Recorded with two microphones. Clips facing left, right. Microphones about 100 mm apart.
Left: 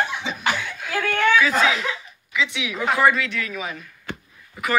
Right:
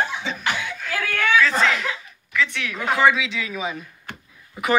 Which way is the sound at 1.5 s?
5° left (ahead or behind).